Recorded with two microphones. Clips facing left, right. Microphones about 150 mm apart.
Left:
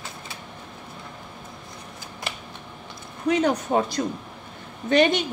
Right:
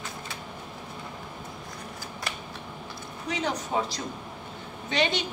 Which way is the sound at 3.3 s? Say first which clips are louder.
Left 9 dB; 50° left (ahead or behind).